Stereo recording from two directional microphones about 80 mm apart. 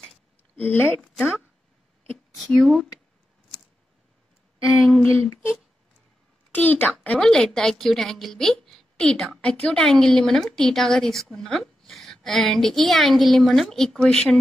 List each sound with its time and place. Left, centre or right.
0.6 s speech: left
2.3 s a woman's voice: centre
4.8 s a woman's voice: centre
6.5 s a woman's voice: centre